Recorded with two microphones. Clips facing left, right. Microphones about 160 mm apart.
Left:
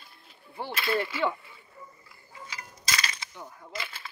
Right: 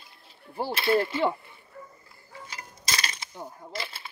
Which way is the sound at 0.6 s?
35° right (ahead or behind).